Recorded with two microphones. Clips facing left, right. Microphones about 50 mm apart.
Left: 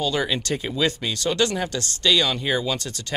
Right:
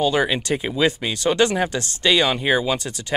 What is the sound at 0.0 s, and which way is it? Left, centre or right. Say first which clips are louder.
Speech: right 4 dB; right.